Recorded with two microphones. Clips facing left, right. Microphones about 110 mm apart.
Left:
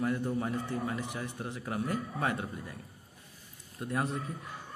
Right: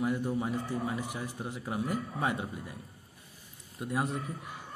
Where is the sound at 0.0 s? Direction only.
10° right (ahead or behind).